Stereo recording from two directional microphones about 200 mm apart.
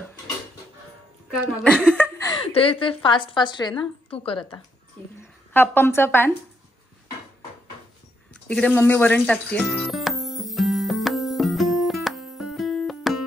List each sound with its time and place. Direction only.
1.6 s chuckle: 5° left (ahead or behind)
2.4 s a woman's voice: 30° left (ahead or behind)
5.5 s speech: 10° left (ahead or behind)
8.3 s music: 5° left (ahead or behind)